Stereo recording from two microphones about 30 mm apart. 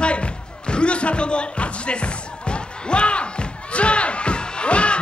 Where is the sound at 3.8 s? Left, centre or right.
Left.